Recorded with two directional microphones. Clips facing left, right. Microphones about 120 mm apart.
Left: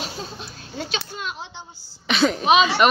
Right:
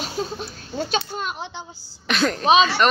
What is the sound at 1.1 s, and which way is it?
Speech, 50° right (ahead or behind).